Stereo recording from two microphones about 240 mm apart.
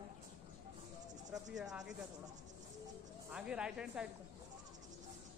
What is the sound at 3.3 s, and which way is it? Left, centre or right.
Speech, centre.